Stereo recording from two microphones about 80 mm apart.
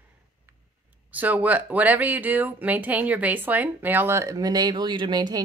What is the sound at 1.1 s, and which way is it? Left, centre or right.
A woman's voice, centre.